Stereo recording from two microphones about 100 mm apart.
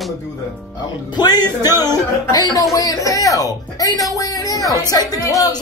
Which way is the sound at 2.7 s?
35° left (ahead or behind).